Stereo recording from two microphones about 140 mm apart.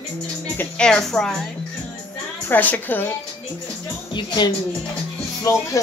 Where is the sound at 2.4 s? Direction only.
10° left (ahead or behind).